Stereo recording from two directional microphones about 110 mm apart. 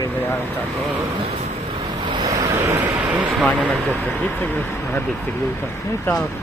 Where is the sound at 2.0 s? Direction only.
45° right (ahead or behind).